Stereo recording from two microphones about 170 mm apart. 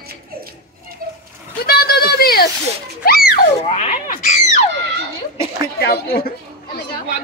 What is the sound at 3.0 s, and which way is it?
Music, 60° left (ahead or behind).